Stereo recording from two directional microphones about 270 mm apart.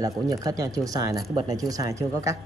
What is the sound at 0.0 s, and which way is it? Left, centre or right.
Speech, centre.